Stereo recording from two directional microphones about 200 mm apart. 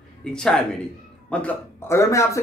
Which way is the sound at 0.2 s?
5° left (ahead or behind).